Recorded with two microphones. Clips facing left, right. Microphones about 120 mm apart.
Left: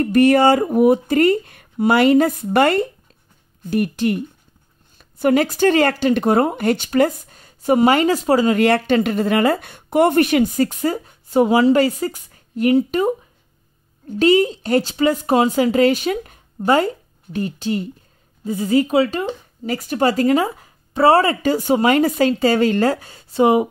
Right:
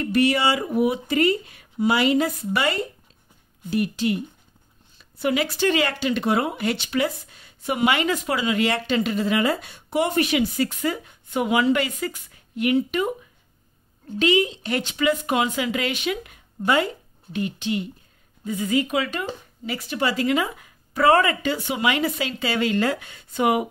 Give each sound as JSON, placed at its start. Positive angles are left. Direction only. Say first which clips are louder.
{"t": 0.0, "sound": "speech", "louder": "left 7 dB", "side_deg": 50}
{"t": 19.6, "sound": "speech", "louder": "left 7 dB", "side_deg": 45}